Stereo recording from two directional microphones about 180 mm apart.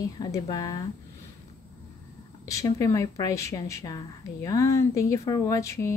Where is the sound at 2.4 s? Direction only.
15° left (ahead or behind).